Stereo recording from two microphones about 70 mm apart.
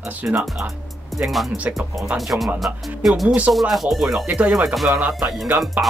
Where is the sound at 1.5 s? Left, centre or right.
Right.